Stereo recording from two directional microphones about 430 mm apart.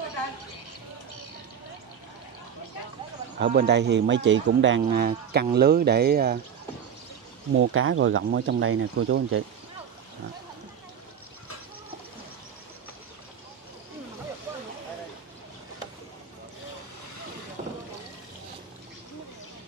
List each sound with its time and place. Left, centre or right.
3.3 s speech: right
7.5 s speech: right
17.6 s pour: centre